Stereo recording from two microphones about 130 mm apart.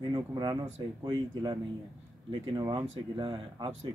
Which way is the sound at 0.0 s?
30° right (ahead or behind).